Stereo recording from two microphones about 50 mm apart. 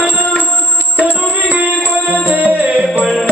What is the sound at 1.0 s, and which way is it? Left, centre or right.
Music, right.